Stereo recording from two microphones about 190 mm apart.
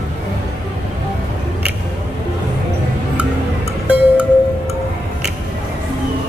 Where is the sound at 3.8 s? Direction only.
5° right (ahead or behind).